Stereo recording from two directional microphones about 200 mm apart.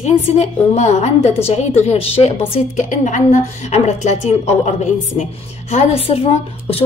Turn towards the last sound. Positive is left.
turn(degrees=30)  # may be behind; listen again after turning